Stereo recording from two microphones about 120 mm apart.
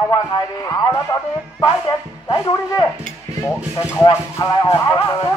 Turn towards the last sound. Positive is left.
turn(degrees=35)  # may be behind; listen again after turning